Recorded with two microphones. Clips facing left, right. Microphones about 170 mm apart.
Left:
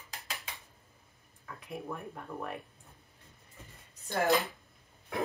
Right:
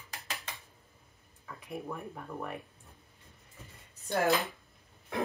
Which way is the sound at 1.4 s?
Centre (ahead or behind).